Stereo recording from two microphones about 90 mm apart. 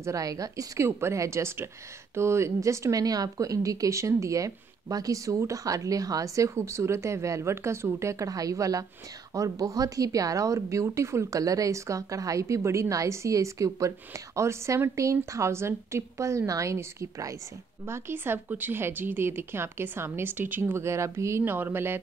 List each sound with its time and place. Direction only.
0.0 s a woman's voice: 40° right (ahead or behind); by 22.0 s 25° right (ahead or behind)